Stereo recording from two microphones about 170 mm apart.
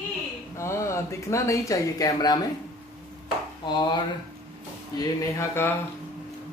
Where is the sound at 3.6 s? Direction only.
25° left (ahead or behind).